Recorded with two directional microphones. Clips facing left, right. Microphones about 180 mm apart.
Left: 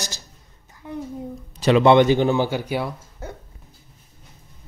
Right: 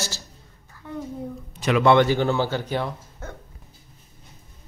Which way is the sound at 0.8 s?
15° left (ahead or behind).